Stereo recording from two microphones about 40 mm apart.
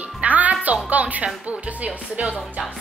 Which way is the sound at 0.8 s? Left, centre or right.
Right.